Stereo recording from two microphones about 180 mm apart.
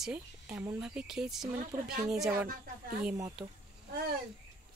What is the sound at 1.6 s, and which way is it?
Speech, 50° right (ahead or behind).